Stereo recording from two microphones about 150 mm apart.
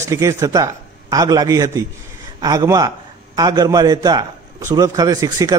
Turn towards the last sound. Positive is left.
turn(degrees=-25)  # may be behind; listen again after turning